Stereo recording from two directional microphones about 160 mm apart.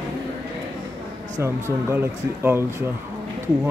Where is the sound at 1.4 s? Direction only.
15° right (ahead or behind).